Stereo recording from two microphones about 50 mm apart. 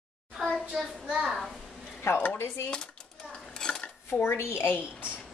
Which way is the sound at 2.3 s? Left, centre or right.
Left.